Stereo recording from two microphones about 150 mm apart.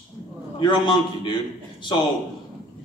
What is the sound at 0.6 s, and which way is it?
Speech, 30° left (ahead or behind).